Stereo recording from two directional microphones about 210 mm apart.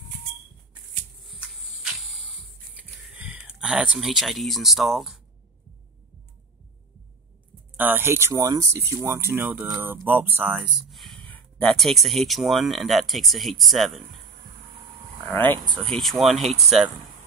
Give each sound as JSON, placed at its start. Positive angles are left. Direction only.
{"t": 1.2, "sound": "a sound", "side_deg": 0}
{"t": 3.1, "sound": "speech", "side_deg": -5}
{"t": 7.7, "sound": "speech", "side_deg": -10}
{"t": 15.5, "sound": "speech", "side_deg": -20}
{"t": 15.9, "sound": "speech", "side_deg": 0}